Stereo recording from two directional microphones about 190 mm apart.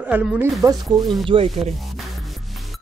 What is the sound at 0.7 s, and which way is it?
Speech, 20° right (ahead or behind).